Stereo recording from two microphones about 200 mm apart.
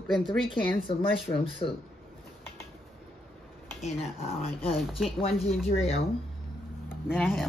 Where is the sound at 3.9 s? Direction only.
30° left (ahead or behind).